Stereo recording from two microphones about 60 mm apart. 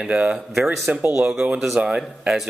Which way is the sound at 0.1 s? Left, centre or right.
Right.